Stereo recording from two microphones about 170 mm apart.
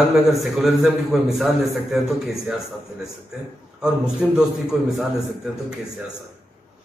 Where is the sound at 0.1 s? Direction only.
Centre (ahead or behind).